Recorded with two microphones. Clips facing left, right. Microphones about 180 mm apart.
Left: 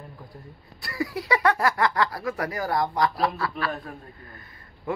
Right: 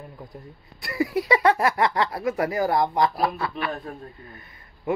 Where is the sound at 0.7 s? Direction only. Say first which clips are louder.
Right 5 dB; 20° right (ahead or behind).